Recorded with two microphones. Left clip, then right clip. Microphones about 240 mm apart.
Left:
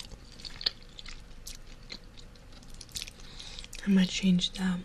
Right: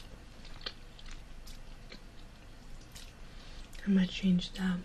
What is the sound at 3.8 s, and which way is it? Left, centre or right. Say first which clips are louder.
Speech: left 4 dB; centre.